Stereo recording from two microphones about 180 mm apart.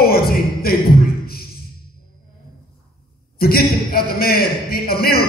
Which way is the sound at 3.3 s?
55° left (ahead or behind).